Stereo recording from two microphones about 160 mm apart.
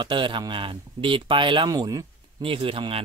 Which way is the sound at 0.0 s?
30° right (ahead or behind).